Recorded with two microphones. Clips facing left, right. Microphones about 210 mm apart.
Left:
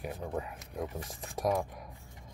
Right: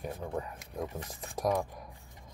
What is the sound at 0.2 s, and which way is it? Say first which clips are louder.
Speech: left 1 dB; 15° left (ahead or behind).